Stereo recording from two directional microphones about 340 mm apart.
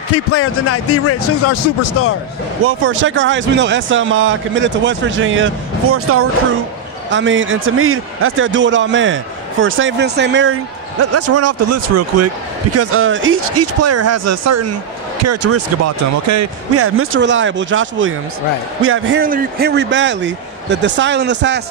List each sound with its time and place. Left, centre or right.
0.3 s speech: left
2.6 s a man's voice: right